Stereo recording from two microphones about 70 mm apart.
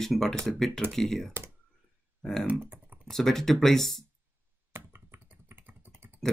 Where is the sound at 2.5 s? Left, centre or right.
Right.